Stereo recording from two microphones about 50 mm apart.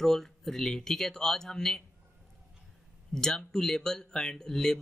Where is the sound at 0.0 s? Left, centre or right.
Centre.